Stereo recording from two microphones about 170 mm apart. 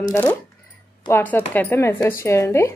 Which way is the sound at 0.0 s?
15° left (ahead or behind).